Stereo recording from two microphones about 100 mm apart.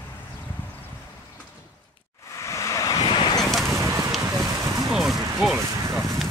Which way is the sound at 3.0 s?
55° left (ahead or behind).